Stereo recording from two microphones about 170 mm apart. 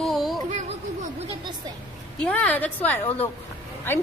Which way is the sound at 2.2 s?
5° left (ahead or behind).